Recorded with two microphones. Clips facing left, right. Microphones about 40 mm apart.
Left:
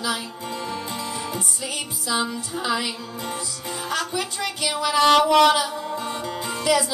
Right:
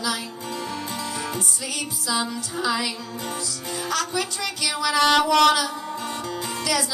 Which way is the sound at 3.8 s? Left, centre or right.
Centre.